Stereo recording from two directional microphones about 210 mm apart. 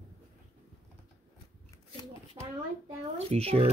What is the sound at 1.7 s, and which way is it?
Shuffling cards, 20° left (ahead or behind).